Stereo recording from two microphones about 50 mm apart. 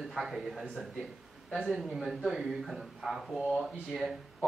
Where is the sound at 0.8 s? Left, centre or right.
Centre.